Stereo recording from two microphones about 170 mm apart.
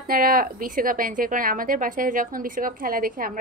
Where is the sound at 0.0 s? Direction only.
60° right (ahead or behind).